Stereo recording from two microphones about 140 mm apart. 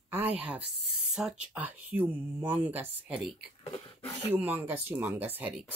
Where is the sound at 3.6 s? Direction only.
45° left (ahead or behind).